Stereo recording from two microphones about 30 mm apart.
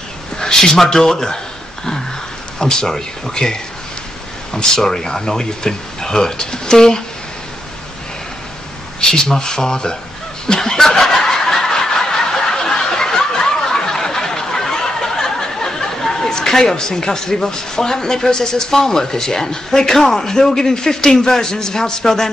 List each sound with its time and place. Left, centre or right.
0.4 s a sound: centre
0.8 s speech: centre
2.6 s speech: left
4.7 s speech: centre
9.0 s speech: centre
10.4 s snicker: left
16.0 s chatter: centre
16.3 s speech: centre